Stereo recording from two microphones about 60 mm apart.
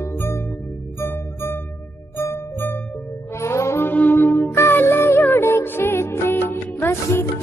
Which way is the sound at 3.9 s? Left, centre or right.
Left.